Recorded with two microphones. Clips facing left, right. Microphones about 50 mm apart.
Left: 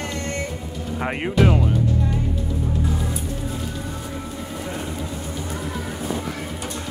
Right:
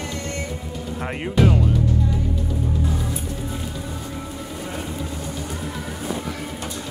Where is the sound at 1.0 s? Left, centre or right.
Left.